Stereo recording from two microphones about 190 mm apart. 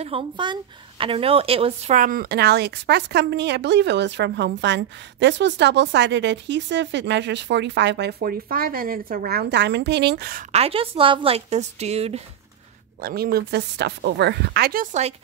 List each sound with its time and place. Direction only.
0.0 s a woman's voice: 25° right (ahead or behind); by 10.4 s 55° right (ahead or behind)
10.5 s a woman's voice: 30° right (ahead or behind)
13.0 s speech: 55° right (ahead or behind)